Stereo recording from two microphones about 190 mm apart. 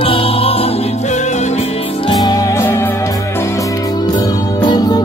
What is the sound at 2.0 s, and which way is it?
Music, 20° left (ahead or behind).